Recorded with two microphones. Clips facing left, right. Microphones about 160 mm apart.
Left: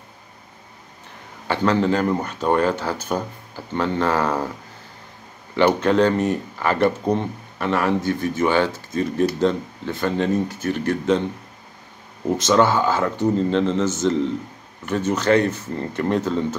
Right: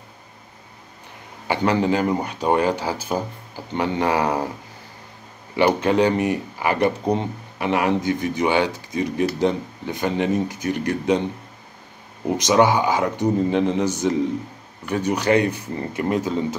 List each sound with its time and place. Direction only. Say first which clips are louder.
1.5 s speech: even; 15° right (ahead or behind)
5.6 s speech: left 1 dB; 10° right (ahead or behind)
12.3 s speech: even; 15° right (ahead or behind)